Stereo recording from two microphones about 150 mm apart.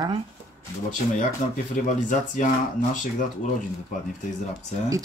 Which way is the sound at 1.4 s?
60° left (ahead or behind).